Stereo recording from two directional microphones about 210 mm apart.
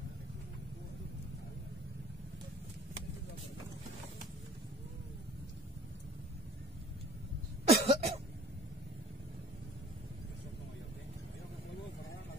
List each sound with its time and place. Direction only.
7.6 s cough: 30° right (ahead or behind)